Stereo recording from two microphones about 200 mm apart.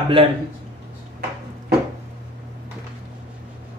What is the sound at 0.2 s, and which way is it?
Speech, 25° right (ahead or behind).